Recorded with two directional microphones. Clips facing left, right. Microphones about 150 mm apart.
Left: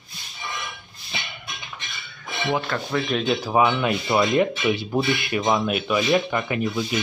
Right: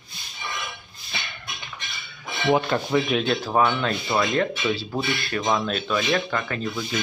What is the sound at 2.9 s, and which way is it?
Speech, 5° right (ahead or behind).